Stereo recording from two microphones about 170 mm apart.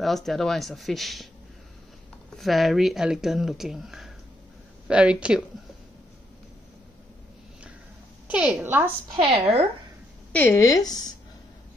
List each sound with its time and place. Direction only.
0.0 s speech: centre (ahead or behind)
2.3 s speech: centre (ahead or behind)
8.3 s a woman's voice: 5° right (ahead or behind)
9.3 s a woman's voice: 35° right (ahead or behind)
10.3 s speech: 10° left (ahead or behind)